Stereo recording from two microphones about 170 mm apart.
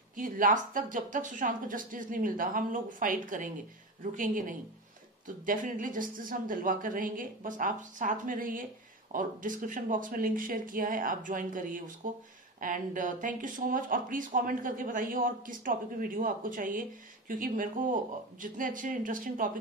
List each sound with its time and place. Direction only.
0.1 s speech: 50° right (ahead or behind)